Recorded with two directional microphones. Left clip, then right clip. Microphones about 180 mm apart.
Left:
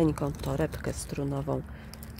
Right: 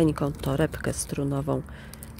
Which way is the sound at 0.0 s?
15° right (ahead or behind).